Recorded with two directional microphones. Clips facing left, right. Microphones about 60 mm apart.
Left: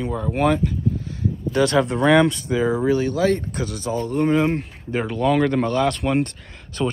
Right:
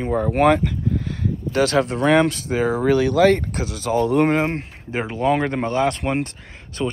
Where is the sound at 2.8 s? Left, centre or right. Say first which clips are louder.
Right 7 dB; right.